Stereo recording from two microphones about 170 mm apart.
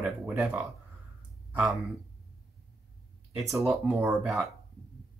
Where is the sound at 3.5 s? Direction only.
15° right (ahead or behind).